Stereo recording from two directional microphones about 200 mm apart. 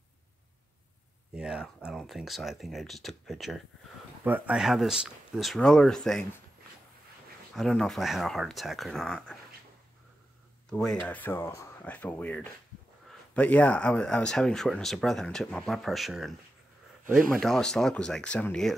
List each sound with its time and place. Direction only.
1.3 s speech: 5° right (ahead or behind)
7.5 s speech: centre (ahead or behind)
10.7 s speech: centre (ahead or behind)